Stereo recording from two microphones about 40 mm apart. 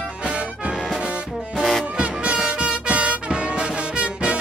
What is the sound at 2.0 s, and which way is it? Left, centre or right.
Music, right.